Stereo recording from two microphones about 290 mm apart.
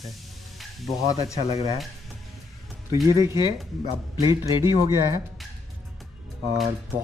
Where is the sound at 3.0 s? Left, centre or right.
Centre.